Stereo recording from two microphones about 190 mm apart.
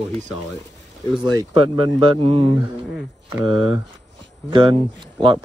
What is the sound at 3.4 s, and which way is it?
Speech, 90° left.